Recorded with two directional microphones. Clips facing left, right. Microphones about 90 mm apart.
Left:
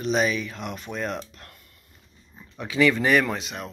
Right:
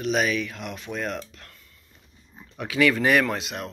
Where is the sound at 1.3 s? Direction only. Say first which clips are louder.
Left 1 dB; 45° left (ahead or behind).